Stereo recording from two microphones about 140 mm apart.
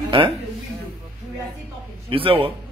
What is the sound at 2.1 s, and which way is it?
Speech, 40° right (ahead or behind).